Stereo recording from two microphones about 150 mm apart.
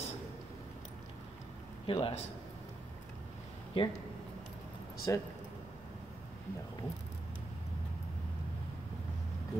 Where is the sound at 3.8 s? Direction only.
35° left (ahead or behind).